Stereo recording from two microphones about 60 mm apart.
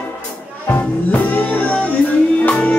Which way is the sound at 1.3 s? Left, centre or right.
Left.